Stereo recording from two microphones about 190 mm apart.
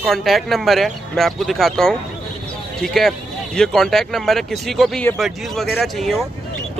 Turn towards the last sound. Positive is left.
turn(degrees=0)  # may be behind; listen again after turning